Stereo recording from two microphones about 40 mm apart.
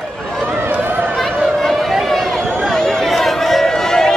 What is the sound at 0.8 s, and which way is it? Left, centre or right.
Run, right.